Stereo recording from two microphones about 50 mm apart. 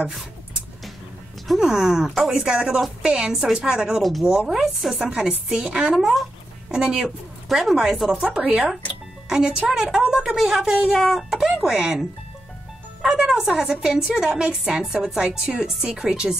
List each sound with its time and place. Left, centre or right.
1.6 s a woman's voice: centre
4.0 s speech: centre
4.3 s a woman's voice: centre
5.0 s a woman's voice: centre
5.9 s speech: centre
6.7 s a woman's voice: centre
8.4 s speech: right
9.3 s a woman's voice: centre
11.0 s a woman's voice: centre
13.3 s a woman's voice: centre